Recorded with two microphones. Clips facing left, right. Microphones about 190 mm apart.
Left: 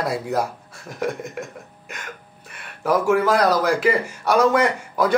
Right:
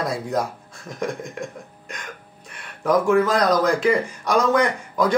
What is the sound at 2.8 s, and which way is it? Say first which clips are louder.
A man's voice: right 1 dB; 5° left (ahead or behind).